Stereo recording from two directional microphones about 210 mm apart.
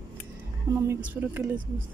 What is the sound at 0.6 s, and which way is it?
Speech, 10° right (ahead or behind).